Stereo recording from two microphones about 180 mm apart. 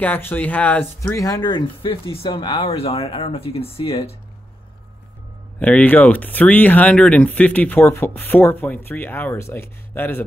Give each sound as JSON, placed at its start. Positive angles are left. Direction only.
{"t": 0.0, "sound": "speech", "side_deg": 10}
{"t": 5.6, "sound": "speech", "side_deg": 10}